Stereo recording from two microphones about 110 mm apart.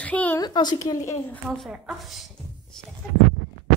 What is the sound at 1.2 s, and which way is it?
Speech, 15° left (ahead or behind).